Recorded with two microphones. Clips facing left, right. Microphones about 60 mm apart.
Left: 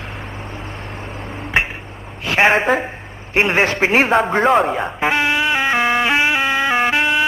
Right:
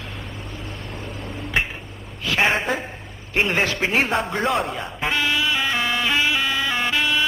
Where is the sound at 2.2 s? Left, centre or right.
Left.